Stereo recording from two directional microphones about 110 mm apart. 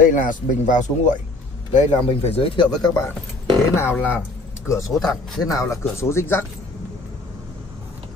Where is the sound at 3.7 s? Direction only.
25° left (ahead or behind).